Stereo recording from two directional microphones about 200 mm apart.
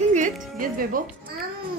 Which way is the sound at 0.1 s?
40° right (ahead or behind).